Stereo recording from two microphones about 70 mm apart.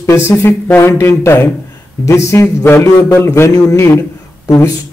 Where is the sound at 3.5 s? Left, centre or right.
Left.